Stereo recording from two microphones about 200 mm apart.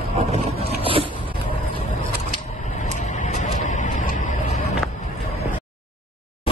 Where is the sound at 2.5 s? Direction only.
40° left (ahead or behind).